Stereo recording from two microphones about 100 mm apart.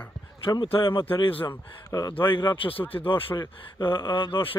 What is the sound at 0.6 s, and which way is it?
Speech, 60° left (ahead or behind).